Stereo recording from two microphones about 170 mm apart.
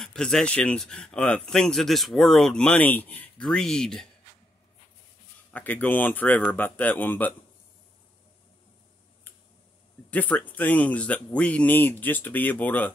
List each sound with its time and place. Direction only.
0.0 s speech: 5° left (ahead or behind)
5.5 s speech: 10° left (ahead or behind)
10.1 s speech: 10° left (ahead or behind)